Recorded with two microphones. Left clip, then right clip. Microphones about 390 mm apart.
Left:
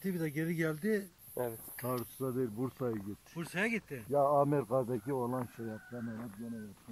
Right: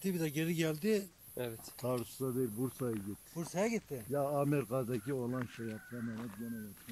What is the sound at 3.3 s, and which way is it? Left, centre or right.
Speech, centre.